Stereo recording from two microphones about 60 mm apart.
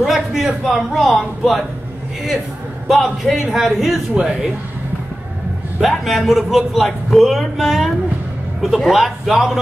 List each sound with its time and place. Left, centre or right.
0.0 s a man's voice: centre
2.9 s a man's voice: centre
5.8 s a man's voice: centre